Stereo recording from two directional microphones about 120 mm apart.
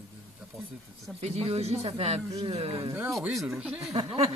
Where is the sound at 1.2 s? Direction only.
65° right (ahead or behind).